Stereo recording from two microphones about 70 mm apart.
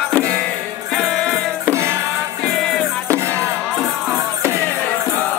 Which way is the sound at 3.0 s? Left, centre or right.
Right.